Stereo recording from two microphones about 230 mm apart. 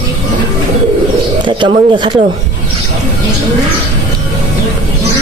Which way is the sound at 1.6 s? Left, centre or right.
Right.